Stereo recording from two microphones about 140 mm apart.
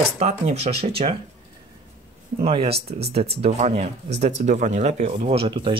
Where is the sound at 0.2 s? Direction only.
50° right (ahead or behind).